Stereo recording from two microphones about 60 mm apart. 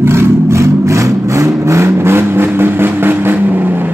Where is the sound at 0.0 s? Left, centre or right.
Right.